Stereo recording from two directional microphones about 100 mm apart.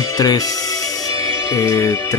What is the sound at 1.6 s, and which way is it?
Speech, 30° left (ahead or behind).